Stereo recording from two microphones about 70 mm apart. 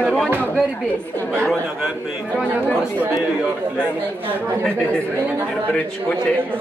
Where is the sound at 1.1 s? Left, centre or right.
Centre.